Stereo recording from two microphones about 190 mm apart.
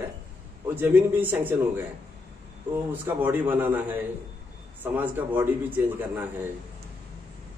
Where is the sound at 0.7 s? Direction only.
10° right (ahead or behind).